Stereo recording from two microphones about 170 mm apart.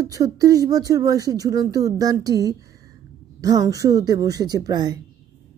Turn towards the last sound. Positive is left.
turn(degrees=-25)  # may be behind; listen again after turning